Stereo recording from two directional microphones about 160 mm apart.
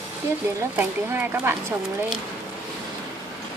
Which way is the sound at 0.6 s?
15° right (ahead or behind).